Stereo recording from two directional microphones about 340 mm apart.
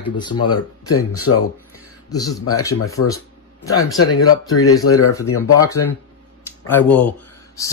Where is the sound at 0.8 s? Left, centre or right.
Left.